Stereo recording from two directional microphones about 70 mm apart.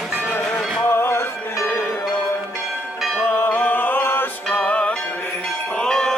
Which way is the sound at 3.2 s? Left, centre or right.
Left.